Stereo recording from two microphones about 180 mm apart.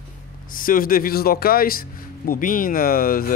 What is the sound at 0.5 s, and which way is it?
Speech, 50° left (ahead or behind).